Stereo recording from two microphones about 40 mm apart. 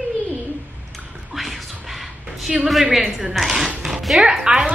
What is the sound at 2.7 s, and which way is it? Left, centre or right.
A woman's voice, centre.